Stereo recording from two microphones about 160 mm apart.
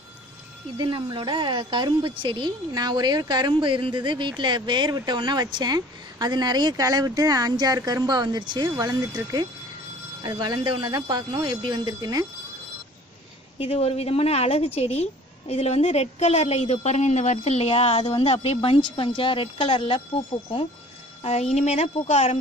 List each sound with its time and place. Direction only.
0.7 s speech: 30° right (ahead or behind)
13.6 s a woman's voice: 40° left (ahead or behind)
21.2 s a woman's voice: 40° left (ahead or behind)